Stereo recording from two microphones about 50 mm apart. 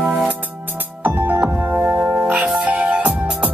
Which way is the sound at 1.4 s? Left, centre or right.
Right.